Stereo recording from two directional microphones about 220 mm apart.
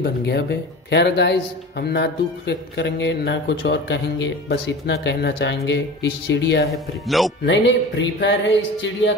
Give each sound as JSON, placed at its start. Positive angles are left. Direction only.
{"t": 0.0, "sound": "speech", "side_deg": 50}
{"t": 6.7, "sound": "speech", "side_deg": 0}
{"t": 7.4, "sound": "music", "side_deg": 55}